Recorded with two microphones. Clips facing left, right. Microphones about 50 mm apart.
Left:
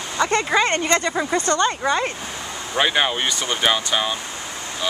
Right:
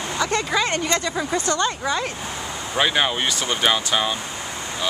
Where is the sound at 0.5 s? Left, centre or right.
Left.